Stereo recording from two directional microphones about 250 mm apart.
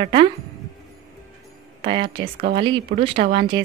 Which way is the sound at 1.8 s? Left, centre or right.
Right.